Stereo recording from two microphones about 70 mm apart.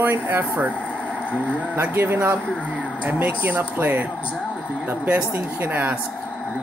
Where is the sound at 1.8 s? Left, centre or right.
Right.